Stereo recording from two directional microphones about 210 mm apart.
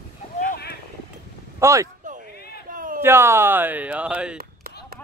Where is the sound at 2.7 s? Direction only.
40° right (ahead or behind).